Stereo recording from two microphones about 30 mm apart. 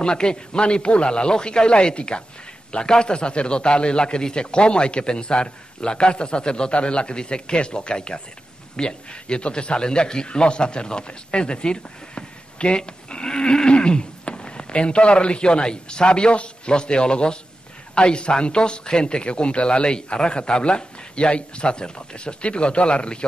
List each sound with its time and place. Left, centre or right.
0.0 s a man's voice: left